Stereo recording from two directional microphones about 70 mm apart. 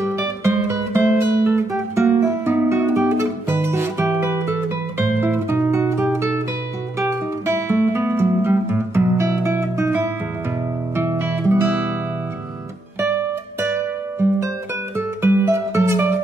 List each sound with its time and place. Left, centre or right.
0.0 s music: right
1.4 s guitar: right
3.1 s music: right
13.6 s music: right